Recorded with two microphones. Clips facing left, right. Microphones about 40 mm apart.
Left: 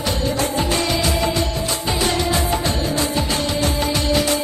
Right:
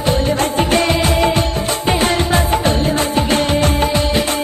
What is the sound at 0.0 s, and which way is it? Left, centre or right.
Music, right.